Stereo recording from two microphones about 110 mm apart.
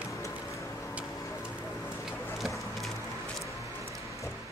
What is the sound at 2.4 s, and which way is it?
Splinter, 5° right (ahead or behind).